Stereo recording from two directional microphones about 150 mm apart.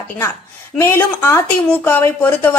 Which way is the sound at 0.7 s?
15° left (ahead or behind).